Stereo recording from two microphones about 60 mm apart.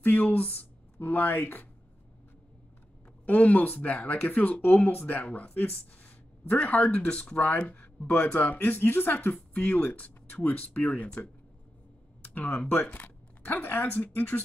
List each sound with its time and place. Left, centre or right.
0.0 s speech: left
3.3 s speech: left
12.4 s speech: left